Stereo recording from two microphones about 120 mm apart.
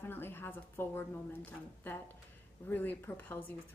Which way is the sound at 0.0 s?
20° left (ahead or behind).